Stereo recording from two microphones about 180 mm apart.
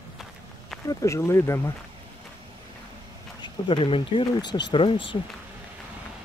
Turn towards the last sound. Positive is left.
turn(degrees=30)  # may be behind; listen again after turning